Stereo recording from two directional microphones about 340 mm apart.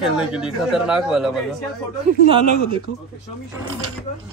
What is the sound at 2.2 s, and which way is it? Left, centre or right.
Speech, centre.